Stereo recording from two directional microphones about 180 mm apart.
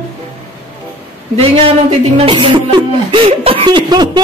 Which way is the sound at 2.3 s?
25° right (ahead or behind).